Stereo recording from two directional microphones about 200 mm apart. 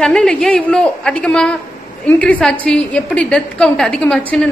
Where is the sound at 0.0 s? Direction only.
5° left (ahead or behind).